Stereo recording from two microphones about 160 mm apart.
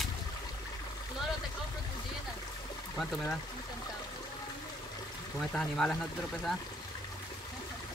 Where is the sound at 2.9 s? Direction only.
5° left (ahead or behind).